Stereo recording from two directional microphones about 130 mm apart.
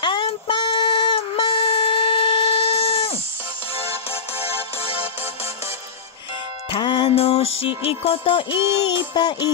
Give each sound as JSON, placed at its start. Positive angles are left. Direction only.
{"t": 0.0, "sound": "a sound", "side_deg": 40}
{"t": 4.1, "sound": "music", "side_deg": 45}
{"t": 6.7, "sound": "music", "side_deg": 35}